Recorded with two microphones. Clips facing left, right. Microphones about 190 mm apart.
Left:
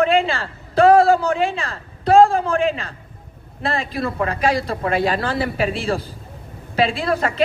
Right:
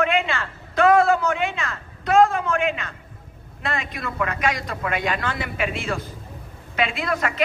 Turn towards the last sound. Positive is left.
turn(degrees=30)  # may be behind; listen again after turning